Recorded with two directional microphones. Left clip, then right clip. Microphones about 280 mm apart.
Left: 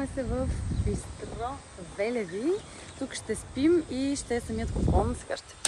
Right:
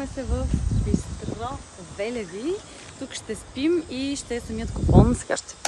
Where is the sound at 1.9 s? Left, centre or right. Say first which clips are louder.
Even; centre.